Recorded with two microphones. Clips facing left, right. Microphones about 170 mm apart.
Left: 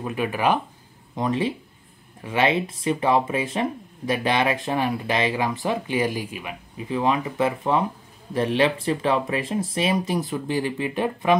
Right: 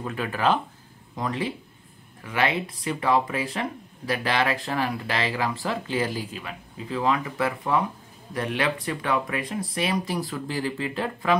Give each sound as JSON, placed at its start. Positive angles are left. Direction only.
{"t": 0.0, "sound": "speech", "side_deg": 15}